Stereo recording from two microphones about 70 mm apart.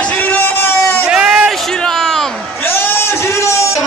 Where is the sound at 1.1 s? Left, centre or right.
Centre.